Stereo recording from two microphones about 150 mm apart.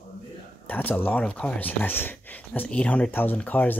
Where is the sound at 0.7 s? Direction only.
10° left (ahead or behind).